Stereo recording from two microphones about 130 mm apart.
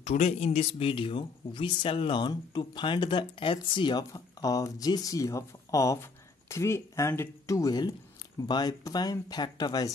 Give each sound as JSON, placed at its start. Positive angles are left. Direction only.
{"t": 0.0, "sound": "speech", "side_deg": 55}